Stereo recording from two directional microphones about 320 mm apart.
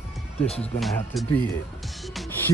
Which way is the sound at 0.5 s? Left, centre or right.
Centre.